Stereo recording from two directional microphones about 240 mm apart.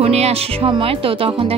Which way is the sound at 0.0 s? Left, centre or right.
Right.